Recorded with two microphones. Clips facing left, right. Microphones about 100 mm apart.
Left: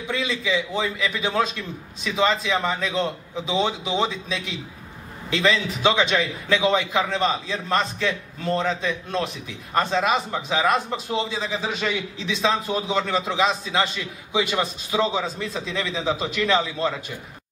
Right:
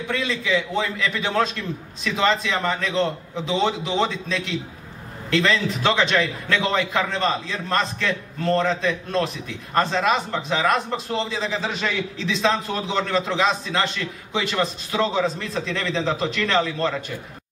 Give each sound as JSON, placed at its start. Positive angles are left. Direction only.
{"t": 0.0, "sound": "a man's voice", "side_deg": 0}